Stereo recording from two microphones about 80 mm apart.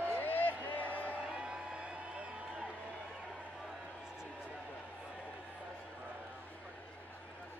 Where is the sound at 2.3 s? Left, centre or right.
Centre.